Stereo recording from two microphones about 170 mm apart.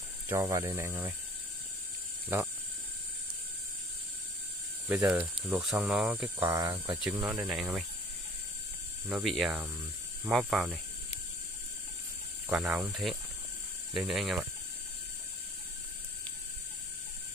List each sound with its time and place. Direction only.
0.3 s speech: 15° right (ahead or behind)
4.8 s speech: 15° right (ahead or behind)
6.5 s speech: 20° right (ahead or behind)
7.2 s speech: 5° right (ahead or behind)
9.1 s speech: centre (ahead or behind)
12.5 s speech: centre (ahead or behind)
13.9 s speech: centre (ahead or behind)